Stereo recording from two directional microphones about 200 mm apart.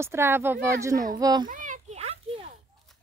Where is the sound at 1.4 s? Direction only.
40° right (ahead or behind).